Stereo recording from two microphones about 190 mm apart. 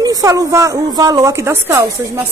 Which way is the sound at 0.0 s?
20° right (ahead or behind).